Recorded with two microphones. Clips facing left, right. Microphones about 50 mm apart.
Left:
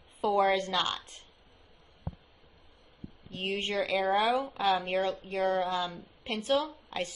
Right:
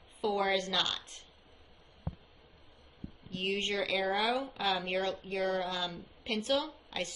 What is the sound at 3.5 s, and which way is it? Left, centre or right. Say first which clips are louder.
Speech: left 3 dB; left.